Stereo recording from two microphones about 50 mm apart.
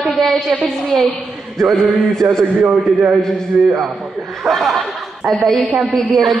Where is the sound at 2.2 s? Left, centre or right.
Right.